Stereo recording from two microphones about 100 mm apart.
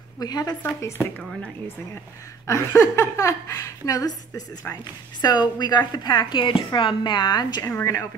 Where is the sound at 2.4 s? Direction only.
30° left (ahead or behind).